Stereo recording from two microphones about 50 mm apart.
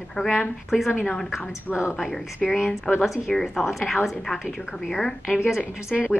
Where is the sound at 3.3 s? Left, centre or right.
Centre.